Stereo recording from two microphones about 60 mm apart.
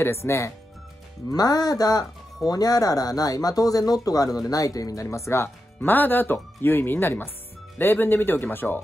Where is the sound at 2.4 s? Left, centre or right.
Left.